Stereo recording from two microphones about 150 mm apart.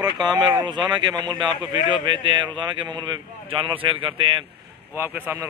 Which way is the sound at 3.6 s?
35° right (ahead or behind).